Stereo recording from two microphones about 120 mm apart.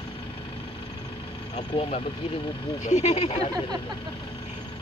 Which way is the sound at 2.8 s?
80° left.